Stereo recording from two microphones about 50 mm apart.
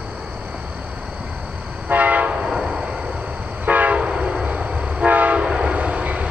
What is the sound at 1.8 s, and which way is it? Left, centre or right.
Train, right.